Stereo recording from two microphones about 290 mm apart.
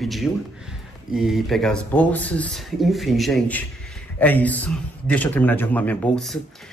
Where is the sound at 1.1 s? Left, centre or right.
Centre.